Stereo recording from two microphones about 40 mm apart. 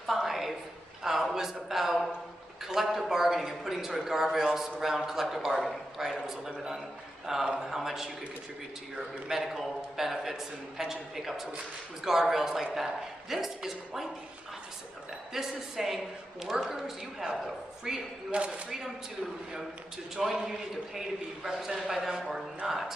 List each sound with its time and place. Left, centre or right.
0.0 s a sound: centre
1.0 s a man's voice: centre
15.3 s a man's voice: centre
18.3 s speech: right
20.2 s a man's voice: centre
22.7 s a man's voice: centre